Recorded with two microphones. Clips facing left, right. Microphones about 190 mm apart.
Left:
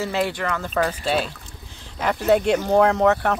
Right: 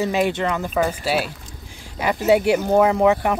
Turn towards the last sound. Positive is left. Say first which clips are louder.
# right 1 dB
turn(degrees=-10)  # may be behind; listen again after turning